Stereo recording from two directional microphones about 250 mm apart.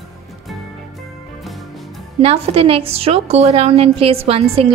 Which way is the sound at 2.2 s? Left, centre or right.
Right.